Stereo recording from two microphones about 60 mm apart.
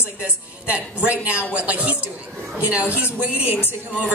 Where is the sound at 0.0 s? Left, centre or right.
Right.